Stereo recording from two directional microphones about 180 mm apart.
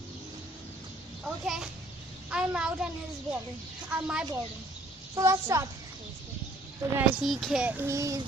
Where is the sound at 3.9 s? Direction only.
5° right (ahead or behind).